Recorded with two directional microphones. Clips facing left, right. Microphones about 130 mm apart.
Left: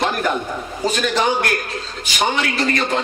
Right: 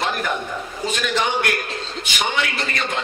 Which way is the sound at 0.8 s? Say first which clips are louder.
Left 4 dB; 35° left (ahead or behind).